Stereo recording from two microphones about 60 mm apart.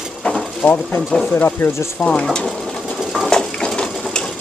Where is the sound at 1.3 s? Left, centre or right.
Left.